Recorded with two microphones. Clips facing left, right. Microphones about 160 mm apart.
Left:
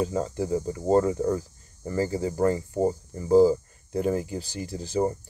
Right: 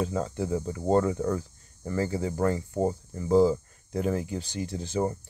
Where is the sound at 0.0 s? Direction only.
10° left (ahead or behind).